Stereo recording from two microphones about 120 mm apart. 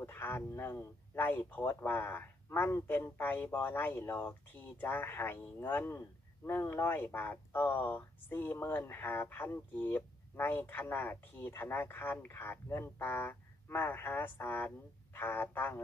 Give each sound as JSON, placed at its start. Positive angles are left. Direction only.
{"t": 0.0, "sound": "speech", "side_deg": 20}